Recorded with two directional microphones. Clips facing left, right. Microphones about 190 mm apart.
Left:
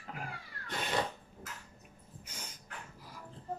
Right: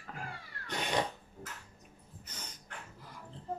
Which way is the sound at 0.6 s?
20° right (ahead or behind).